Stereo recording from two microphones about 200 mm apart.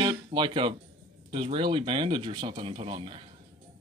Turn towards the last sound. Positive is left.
turn(degrees=-25)  # may be behind; listen again after turning